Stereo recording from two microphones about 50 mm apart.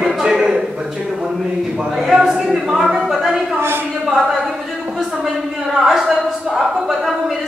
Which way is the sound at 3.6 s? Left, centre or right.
Right.